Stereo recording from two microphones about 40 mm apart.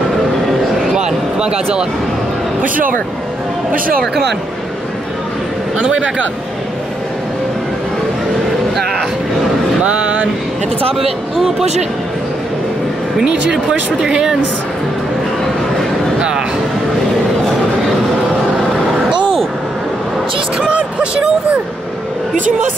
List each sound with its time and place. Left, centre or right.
0.9 s a sound: centre
5.8 s speech: right
11.0 s speech: centre
13.2 s speech: centre
16.2 s vehicle: right
20.5 s speech: right